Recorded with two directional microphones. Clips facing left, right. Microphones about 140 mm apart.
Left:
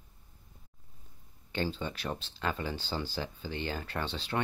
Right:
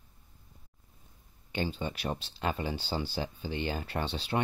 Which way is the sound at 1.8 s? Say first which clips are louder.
Right 2 dB; 15° right (ahead or behind).